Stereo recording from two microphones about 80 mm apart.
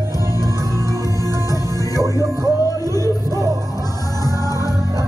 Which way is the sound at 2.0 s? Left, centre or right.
Right.